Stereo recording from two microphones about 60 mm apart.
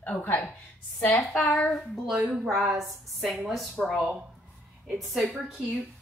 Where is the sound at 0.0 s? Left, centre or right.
Left.